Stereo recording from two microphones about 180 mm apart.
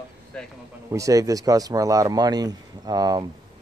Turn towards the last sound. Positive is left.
turn(degrees=-20)  # may be behind; listen again after turning